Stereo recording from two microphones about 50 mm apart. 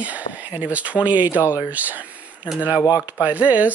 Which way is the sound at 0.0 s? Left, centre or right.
Right.